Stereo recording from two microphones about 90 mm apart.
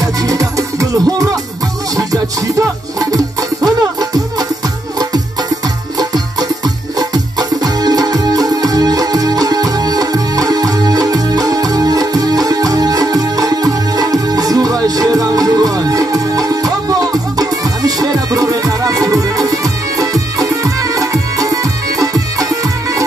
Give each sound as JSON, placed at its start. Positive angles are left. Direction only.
{"t": 0.2, "sound": "music", "side_deg": -40}
{"t": 2.6, "sound": "music", "side_deg": -40}
{"t": 5.9, "sound": "music", "side_deg": -45}